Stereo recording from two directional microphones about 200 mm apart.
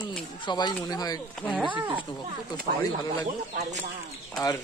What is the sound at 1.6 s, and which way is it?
Speech, 25° right (ahead or behind).